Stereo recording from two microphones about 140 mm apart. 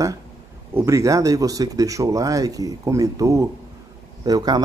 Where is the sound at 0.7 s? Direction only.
20° right (ahead or behind).